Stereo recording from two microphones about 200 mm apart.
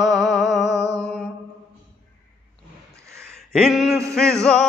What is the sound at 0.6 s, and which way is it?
Music, 15° right (ahead or behind).